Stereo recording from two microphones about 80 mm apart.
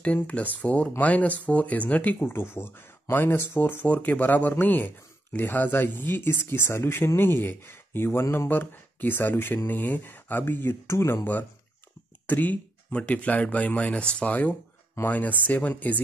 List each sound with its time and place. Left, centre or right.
0.0 s speech: centre
12.3 s speech: centre